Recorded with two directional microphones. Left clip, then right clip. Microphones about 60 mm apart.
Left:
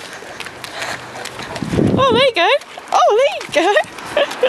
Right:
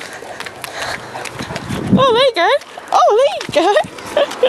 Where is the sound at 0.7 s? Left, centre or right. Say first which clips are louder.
Right 2 dB; centre.